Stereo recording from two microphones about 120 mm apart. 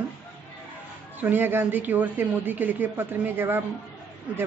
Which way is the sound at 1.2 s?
15° right (ahead or behind).